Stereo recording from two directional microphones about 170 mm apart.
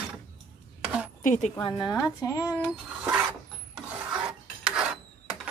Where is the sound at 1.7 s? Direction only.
5° right (ahead or behind).